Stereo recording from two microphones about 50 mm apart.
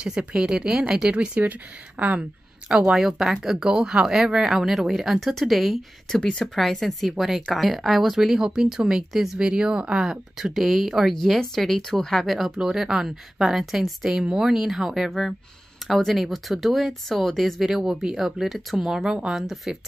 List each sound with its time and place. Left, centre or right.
0.0 s speech: right
1.1 s speech: right
2.9 s speech: centre
9.4 s speech: centre
11.1 s speech: centre
14.1 s speech: centre
17.6 s speech: centre